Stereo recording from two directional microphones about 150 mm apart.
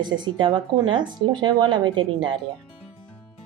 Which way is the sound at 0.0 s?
30° right (ahead or behind).